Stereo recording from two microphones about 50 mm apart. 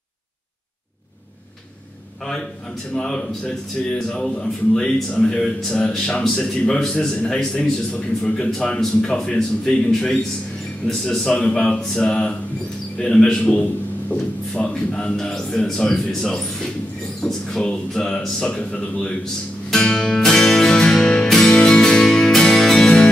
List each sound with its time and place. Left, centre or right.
2.9 s speech: centre
8.2 s speech: centre
19.7 s music: centre